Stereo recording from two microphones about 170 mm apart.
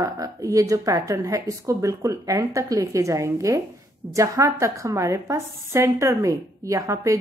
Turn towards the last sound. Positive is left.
turn(degrees=-20)  # may be behind; listen again after turning